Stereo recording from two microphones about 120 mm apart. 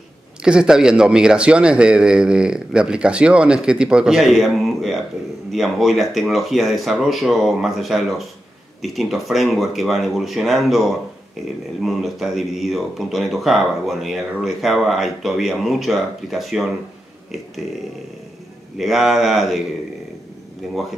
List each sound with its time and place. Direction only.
0.4 s speech: 5° right (ahead or behind)
18.8 s speech: centre (ahead or behind)
20.6 s speech: centre (ahead or behind)